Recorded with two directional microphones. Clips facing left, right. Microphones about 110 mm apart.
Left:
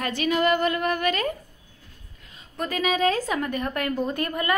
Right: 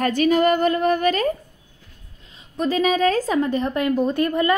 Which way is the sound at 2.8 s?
40° right (ahead or behind).